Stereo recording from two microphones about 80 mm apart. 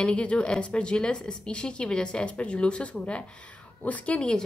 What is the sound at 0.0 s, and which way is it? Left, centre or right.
Speech, centre.